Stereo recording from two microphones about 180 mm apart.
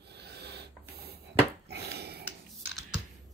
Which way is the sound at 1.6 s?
65° right (ahead or behind).